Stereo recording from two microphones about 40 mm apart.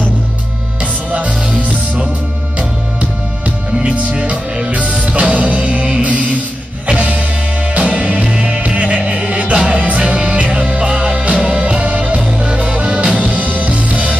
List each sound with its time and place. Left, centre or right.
3.0 s music: right
5.7 s music: right
6.0 s music: right
11.8 s music: right